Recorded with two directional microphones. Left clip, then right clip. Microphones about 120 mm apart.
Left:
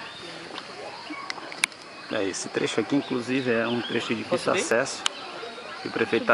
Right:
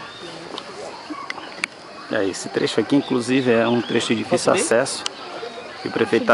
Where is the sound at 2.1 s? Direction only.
Centre (ahead or behind).